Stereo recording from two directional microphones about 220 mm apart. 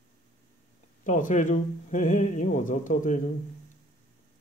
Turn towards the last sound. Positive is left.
turn(degrees=35)  # may be behind; listen again after turning